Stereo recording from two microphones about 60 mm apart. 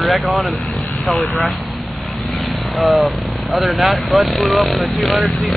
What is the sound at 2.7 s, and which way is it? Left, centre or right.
Speech, centre.